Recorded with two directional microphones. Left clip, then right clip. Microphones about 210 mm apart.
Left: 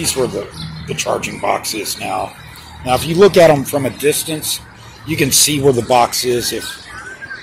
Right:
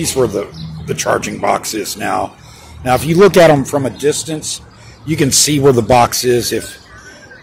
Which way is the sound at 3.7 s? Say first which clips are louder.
Right 1 dB; 5° right (ahead or behind).